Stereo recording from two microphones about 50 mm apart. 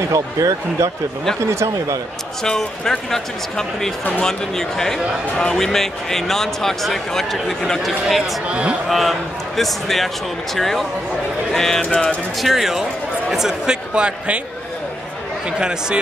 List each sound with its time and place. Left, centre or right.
0.1 s speech: right
1.4 s speech: right
2.4 s speech: centre
8.5 s a man's voice: right
8.8 s speech: centre
11.8 s music: centre
12.4 s speech: centre
13.9 s a man's voice: right